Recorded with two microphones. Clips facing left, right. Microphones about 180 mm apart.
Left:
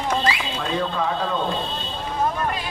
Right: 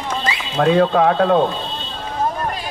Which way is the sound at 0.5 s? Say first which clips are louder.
Right 10 dB; 65° right (ahead or behind).